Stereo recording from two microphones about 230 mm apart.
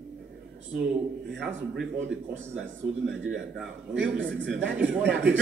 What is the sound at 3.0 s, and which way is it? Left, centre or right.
A man's voice, right.